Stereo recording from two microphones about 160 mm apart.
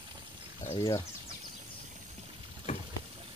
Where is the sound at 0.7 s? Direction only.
25° left (ahead or behind).